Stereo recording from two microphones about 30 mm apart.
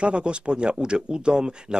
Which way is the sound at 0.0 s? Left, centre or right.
Right.